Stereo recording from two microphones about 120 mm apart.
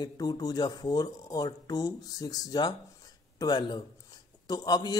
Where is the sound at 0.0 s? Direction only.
35° left (ahead or behind).